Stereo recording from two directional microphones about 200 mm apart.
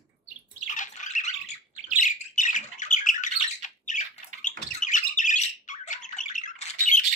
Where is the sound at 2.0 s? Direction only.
40° left (ahead or behind).